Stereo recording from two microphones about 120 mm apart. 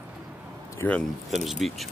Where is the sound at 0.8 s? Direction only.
10° left (ahead or behind).